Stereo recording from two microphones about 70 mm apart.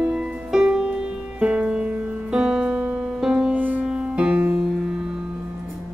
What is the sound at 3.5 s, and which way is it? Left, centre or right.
Music, right.